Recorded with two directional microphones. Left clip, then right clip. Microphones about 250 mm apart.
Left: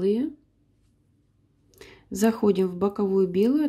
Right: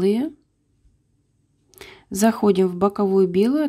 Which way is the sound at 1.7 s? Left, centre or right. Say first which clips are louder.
Right 4 dB; centre.